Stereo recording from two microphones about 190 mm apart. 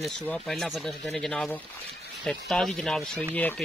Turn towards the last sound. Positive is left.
turn(degrees=10)  # may be behind; listen again after turning